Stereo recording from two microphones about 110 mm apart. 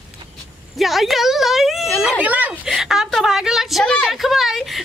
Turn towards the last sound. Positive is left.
turn(degrees=0)  # may be behind; listen again after turning